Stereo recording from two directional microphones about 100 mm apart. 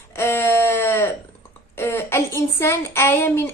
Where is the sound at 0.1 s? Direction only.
25° left (ahead or behind).